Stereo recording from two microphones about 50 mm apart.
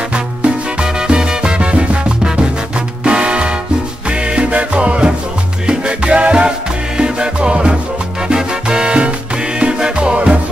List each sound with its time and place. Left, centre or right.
1.0 s music: centre